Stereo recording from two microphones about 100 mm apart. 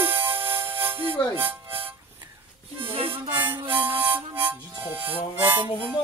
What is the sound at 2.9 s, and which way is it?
Harmonica, 65° right (ahead or behind).